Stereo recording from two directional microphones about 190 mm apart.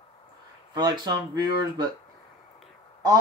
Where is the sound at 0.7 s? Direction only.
20° right (ahead or behind).